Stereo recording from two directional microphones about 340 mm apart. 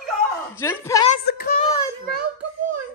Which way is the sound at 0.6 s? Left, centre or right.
Centre.